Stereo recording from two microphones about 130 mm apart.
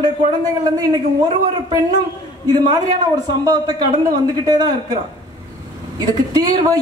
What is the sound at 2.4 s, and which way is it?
A man's voice, 30° right (ahead or behind).